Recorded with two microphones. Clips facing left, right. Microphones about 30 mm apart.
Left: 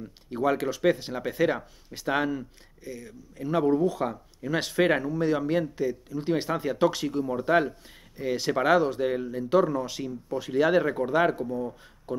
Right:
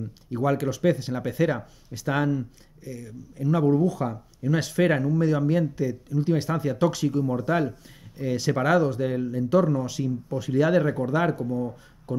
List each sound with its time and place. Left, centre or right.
0.0 s speech: centre